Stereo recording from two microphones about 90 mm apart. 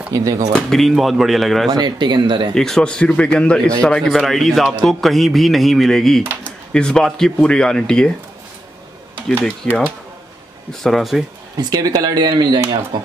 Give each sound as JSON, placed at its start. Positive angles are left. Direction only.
{"t": 0.1, "sound": "speech", "side_deg": -40}
{"t": 0.5, "sound": "speech", "side_deg": 5}
{"t": 1.7, "sound": "speech", "side_deg": -55}
{"t": 2.5, "sound": "speech", "side_deg": 5}
{"t": 9.7, "sound": "speech", "side_deg": 10}
{"t": 11.5, "sound": "speech", "side_deg": -45}